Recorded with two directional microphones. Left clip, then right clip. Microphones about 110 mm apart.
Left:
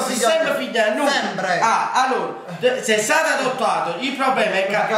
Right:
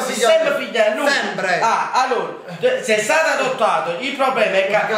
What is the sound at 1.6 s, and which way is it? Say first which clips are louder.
Speech: left 1 dB; 5° left (ahead or behind).